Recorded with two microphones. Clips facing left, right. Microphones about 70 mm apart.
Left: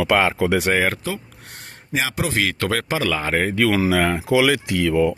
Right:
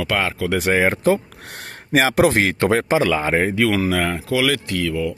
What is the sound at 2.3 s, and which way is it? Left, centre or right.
Speech, right.